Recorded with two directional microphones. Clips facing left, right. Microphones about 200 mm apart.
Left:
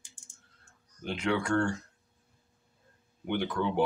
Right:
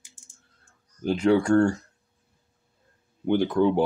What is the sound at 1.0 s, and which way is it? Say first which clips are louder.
Speech: right 10 dB; 40° right (ahead or behind).